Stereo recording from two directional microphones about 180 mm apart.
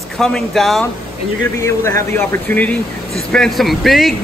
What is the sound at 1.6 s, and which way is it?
Speech, 15° left (ahead or behind).